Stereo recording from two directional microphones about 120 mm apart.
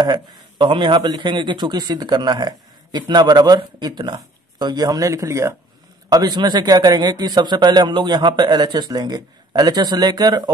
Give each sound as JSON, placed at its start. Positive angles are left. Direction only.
{"t": 0.0, "sound": "speech", "side_deg": -40}